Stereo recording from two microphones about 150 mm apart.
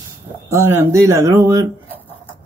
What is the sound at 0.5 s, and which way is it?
Speech, 15° right (ahead or behind).